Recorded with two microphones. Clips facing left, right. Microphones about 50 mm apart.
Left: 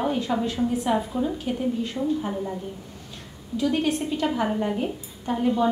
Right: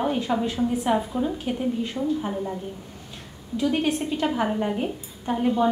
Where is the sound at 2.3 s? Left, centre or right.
Centre.